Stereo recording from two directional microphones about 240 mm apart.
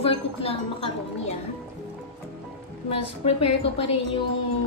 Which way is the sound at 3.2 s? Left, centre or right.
Left.